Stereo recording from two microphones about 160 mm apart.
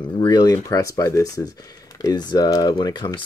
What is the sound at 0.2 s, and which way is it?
Speech, 25° left (ahead or behind).